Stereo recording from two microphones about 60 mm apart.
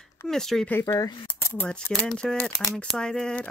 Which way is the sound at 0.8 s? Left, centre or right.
Left.